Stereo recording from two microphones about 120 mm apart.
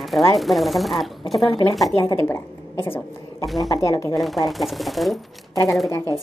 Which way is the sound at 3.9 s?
25° left (ahead or behind).